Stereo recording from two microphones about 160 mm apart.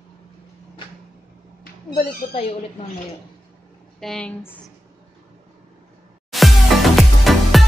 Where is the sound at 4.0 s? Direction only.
5° left (ahead or behind).